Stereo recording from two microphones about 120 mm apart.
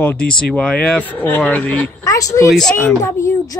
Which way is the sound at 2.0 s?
30° left (ahead or behind).